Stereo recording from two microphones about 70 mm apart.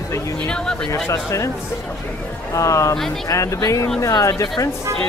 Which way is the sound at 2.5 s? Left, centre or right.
Left.